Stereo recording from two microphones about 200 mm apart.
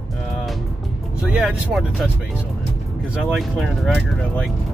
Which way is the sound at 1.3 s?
5° right (ahead or behind).